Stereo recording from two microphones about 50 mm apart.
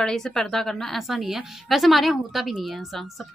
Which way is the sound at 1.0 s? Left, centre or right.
Centre.